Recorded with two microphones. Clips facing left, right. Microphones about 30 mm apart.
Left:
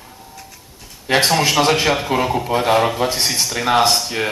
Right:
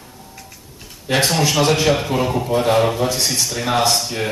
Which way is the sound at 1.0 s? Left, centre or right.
Left.